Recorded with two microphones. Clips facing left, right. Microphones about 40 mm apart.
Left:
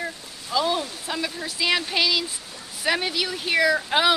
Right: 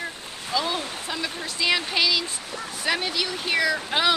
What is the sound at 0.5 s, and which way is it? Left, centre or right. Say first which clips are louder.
Speech: left 3 dB; centre.